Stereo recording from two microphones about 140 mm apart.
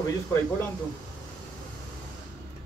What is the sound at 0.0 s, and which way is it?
Speech, 20° left (ahead or behind).